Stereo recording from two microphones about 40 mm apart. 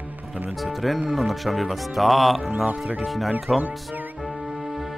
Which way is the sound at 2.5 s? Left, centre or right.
Right.